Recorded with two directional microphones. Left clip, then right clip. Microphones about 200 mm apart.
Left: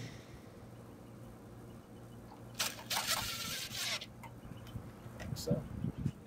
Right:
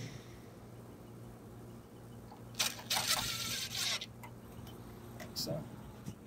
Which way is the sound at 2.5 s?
15° left (ahead or behind).